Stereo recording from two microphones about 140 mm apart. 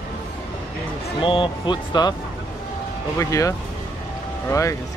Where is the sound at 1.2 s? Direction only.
40° left (ahead or behind).